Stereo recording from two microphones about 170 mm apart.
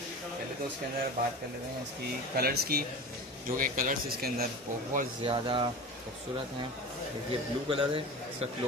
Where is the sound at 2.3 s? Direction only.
65° right (ahead or behind).